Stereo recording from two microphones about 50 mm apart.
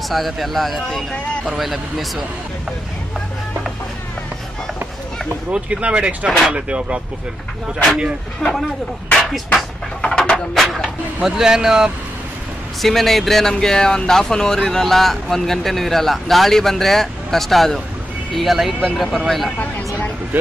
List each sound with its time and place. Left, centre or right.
0.1 s speech: centre
5.5 s speech: right
8.4 s speech: centre
9.2 s music: centre
10.0 s a sound: centre
10.5 s speech: centre
11.2 s speech: centre
12.8 s speech: centre